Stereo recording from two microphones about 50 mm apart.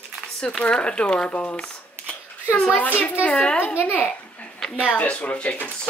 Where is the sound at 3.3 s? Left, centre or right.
Left.